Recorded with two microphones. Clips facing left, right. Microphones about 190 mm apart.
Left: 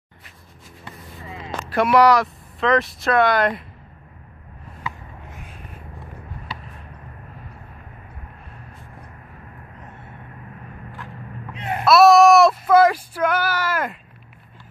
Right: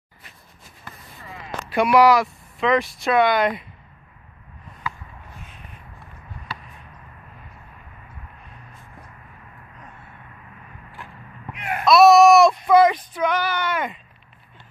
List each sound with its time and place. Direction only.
1.7 s speech: centre (ahead or behind)
11.5 s a sound: 25° left (ahead or behind)
11.8 s female singing: centre (ahead or behind)